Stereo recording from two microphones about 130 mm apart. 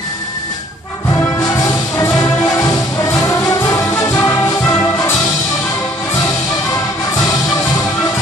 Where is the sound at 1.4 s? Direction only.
25° left (ahead or behind).